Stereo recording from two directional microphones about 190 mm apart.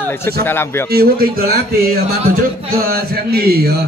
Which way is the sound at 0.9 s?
50° right (ahead or behind).